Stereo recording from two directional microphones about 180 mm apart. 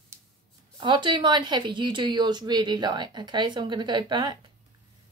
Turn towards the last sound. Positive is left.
turn(degrees=-25)  # may be behind; listen again after turning